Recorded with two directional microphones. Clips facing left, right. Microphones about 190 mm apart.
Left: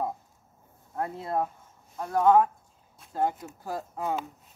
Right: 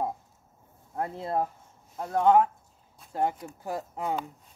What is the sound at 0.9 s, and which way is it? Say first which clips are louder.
Speech: even; 25° right (ahead or behind).